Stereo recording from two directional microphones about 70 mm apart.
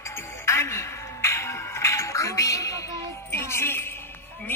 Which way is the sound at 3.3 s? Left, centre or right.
Left.